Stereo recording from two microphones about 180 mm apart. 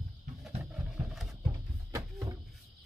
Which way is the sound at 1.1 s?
Centre (ahead or behind).